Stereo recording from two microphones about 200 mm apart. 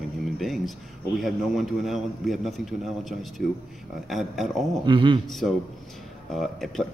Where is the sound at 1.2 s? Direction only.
Centre (ahead or behind).